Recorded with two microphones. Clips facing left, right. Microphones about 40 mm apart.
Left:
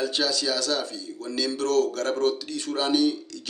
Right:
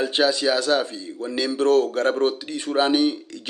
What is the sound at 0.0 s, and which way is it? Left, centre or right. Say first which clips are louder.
Speech: right 6 dB; right.